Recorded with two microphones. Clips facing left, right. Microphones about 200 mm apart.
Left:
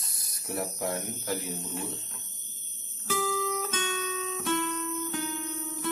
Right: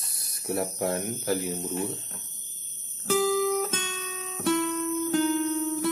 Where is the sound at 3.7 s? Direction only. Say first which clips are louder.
Left 2 dB; 40° right (ahead or behind).